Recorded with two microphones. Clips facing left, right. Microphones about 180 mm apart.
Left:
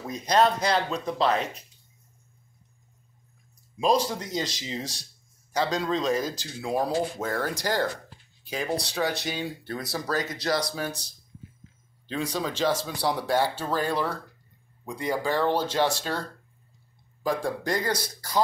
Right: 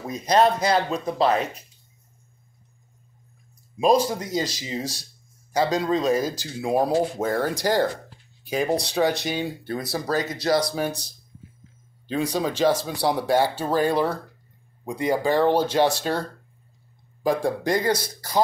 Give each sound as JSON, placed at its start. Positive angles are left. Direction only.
{"t": 0.0, "sound": "speech", "side_deg": -5}
{"t": 4.0, "sound": "a man's voice", "side_deg": -10}
{"t": 12.1, "sound": "speech", "side_deg": -15}